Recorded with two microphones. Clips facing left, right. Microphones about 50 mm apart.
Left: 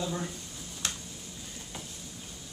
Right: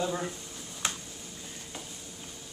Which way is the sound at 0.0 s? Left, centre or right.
Centre.